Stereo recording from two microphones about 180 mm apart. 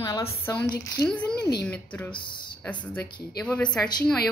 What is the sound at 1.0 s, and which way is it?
Speech, 5° left (ahead or behind).